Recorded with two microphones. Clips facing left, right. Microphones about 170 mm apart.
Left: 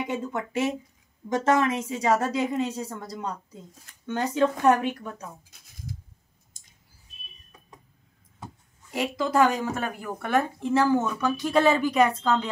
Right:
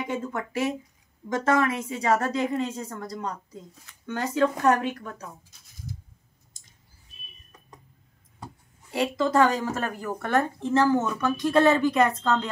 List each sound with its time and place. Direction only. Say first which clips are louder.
0.0 s a woman's voice: left 1 dB; 20° left (ahead or behind)
8.9 s a woman's voice: right 1 dB; 5° left (ahead or behind)